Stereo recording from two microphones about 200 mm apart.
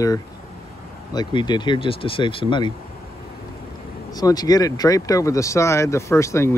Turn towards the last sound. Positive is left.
turn(degrees=15)  # may be behind; listen again after turning